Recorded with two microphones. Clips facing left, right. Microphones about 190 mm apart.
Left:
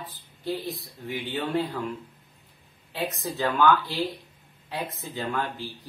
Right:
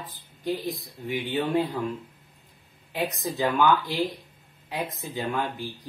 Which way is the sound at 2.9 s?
15° right (ahead or behind).